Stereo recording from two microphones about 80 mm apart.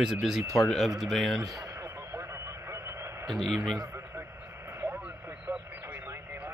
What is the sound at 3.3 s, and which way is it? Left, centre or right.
Speech, centre.